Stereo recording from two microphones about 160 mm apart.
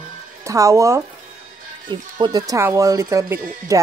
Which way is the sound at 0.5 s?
20° right (ahead or behind).